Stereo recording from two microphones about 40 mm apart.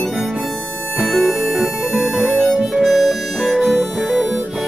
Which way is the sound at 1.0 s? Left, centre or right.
Centre.